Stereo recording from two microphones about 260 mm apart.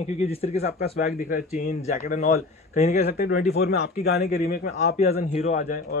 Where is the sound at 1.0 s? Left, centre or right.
Left.